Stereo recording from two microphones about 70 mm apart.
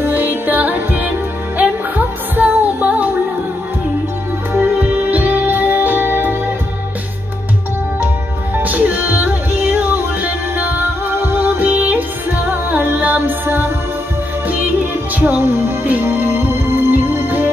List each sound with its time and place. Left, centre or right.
0.0 s music: right
4.6 s music: right
8.6 s music: right